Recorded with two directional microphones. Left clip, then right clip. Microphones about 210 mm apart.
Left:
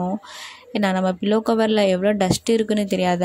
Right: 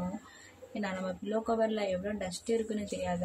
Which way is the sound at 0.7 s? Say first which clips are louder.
Left 15 dB; 40° left (ahead or behind).